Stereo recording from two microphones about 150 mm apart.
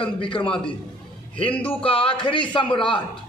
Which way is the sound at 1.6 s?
40° left (ahead or behind).